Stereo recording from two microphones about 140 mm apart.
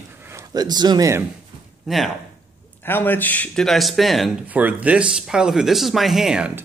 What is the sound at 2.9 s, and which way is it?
Speech, 15° left (ahead or behind).